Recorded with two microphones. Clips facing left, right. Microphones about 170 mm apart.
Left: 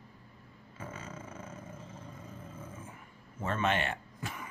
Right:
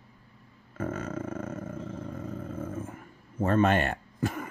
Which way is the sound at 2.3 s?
55° right (ahead or behind).